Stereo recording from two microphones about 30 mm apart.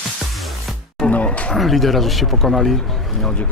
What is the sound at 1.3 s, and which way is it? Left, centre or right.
Speech, left.